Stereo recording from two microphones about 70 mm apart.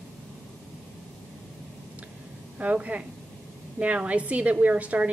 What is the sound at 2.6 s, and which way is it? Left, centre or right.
A woman's voice, right.